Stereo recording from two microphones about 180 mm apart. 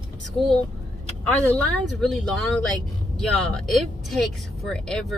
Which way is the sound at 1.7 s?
Centre (ahead or behind).